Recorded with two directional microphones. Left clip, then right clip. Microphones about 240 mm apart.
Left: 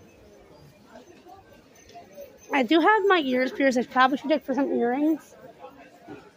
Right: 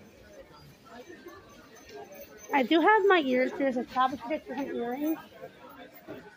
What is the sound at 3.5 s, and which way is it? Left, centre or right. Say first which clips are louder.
Speech: left 7 dB; left.